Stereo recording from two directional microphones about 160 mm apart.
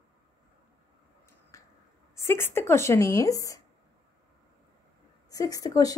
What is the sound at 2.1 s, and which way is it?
Speech, 15° left (ahead or behind).